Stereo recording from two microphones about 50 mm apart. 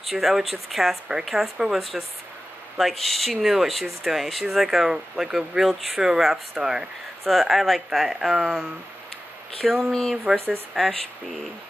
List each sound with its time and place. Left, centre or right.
0.0 s speech: centre
7.2 s speech: centre
8.1 s speech: centre
9.6 s speech: centre
10.3 s speech: centre
10.8 s speech: centre